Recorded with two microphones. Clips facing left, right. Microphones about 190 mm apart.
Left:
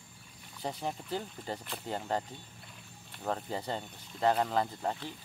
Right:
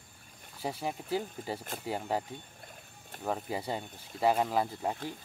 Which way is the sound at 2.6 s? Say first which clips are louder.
Right 2 dB; 50° right (ahead or behind).